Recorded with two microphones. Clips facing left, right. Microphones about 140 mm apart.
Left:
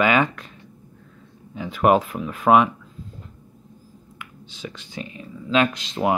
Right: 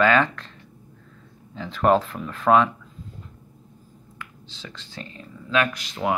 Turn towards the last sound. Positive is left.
turn(degrees=20)  # may be behind; listen again after turning